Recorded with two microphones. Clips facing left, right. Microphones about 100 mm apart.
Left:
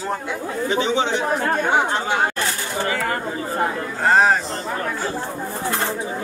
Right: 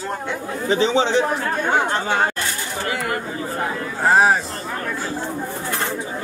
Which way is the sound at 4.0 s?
5° right (ahead or behind).